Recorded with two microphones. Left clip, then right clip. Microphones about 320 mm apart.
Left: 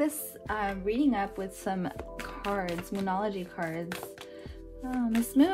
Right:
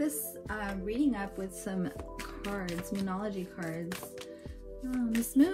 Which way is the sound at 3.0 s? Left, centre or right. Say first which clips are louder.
Left 10 dB; left.